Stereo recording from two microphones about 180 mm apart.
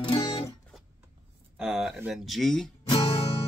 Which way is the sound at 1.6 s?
Centre (ahead or behind).